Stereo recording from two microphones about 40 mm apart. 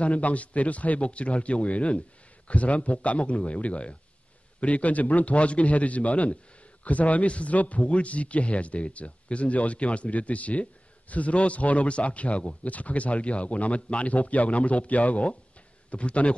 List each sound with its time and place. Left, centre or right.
0.0 s a man's voice: left